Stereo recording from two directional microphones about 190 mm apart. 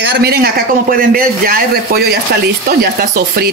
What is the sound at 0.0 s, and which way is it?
A man's voice, 60° right (ahead or behind).